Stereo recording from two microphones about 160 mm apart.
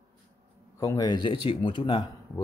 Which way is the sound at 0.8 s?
25° left (ahead or behind).